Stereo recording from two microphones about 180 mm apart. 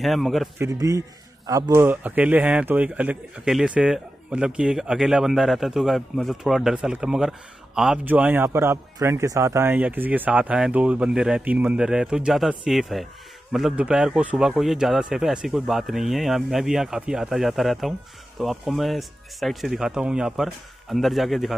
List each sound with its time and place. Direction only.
0.0 s a man's voice: centre (ahead or behind)
0.6 s a man's voice: 20° right (ahead or behind); by 21.5 s centre (ahead or behind)